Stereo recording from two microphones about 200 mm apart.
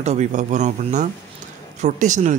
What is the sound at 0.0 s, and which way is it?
Speech, 35° right (ahead or behind).